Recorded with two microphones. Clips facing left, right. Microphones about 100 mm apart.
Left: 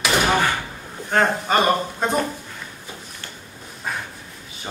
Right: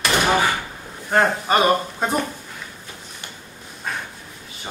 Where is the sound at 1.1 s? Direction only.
5° right (ahead or behind).